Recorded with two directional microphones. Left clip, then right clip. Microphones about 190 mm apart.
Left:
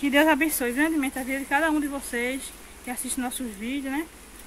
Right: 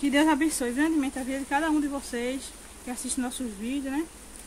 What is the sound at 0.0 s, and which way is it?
Speech, 15° left (ahead or behind).